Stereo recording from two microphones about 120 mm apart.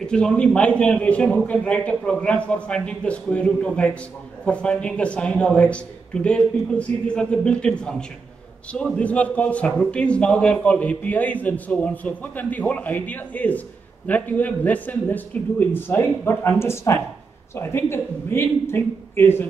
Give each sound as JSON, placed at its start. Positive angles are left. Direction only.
{"t": 0.0, "sound": "a man's voice", "side_deg": 5}